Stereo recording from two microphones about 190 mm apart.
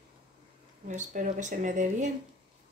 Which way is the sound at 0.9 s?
40° right (ahead or behind).